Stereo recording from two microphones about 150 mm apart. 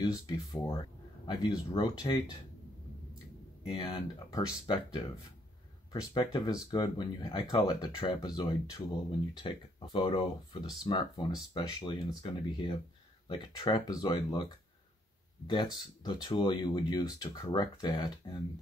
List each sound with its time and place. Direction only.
0.0 s speech: 25° left (ahead or behind)
3.6 s speech: 35° left (ahead or behind)
4.3 s speech: 25° left (ahead or behind)
5.9 s speech: 30° left (ahead or behind)
15.4 s speech: 25° left (ahead or behind)